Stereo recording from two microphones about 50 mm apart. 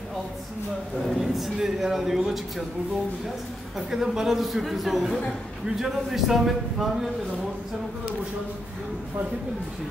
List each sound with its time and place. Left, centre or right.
1.0 s a man's voice: centre
3.7 s a man's voice: centre